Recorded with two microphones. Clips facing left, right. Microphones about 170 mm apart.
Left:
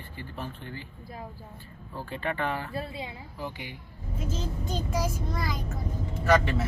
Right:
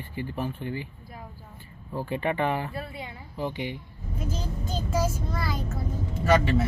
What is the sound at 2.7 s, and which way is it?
Speech, 25° left (ahead or behind).